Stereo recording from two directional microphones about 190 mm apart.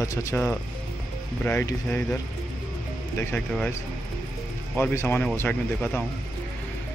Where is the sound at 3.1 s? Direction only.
5° left (ahead or behind).